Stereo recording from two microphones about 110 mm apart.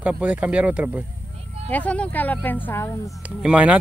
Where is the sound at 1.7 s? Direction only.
15° left (ahead or behind).